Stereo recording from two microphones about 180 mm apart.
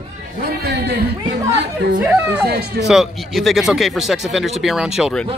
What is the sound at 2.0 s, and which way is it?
Speech, 5° right (ahead or behind).